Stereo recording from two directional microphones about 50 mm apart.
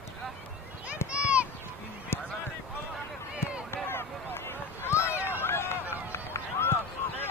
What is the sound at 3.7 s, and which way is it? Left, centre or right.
Run, left.